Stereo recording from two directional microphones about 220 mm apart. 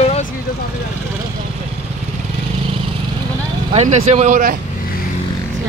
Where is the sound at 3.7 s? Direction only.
30° right (ahead or behind).